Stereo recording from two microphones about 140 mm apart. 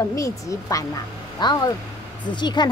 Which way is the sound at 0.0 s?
25° left (ahead or behind).